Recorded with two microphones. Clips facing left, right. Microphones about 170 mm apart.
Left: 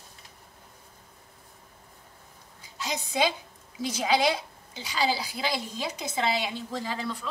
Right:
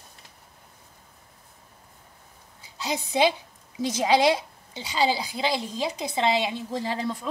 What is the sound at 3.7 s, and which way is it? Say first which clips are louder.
A woman's voice: right 4 dB; 25° right (ahead or behind).